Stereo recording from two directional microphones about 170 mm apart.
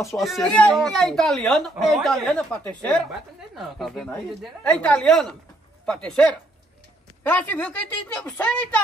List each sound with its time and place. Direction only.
0.1 s a woman's voice: centre (ahead or behind)